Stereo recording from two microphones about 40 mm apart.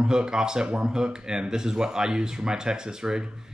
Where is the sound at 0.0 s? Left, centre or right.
Centre.